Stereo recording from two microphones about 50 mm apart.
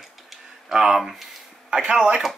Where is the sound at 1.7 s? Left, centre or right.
Centre.